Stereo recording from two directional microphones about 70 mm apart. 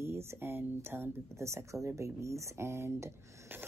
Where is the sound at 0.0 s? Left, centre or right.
Right.